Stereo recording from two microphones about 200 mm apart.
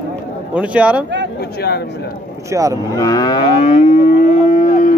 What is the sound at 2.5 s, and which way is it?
Speech, 15° right (ahead or behind).